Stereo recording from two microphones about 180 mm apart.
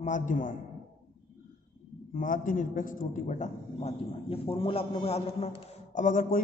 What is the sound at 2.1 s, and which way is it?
A man's voice, 50° left (ahead or behind).